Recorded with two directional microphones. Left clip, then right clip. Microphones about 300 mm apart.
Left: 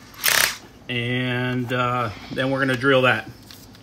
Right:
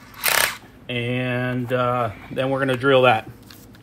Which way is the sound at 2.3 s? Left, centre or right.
Centre.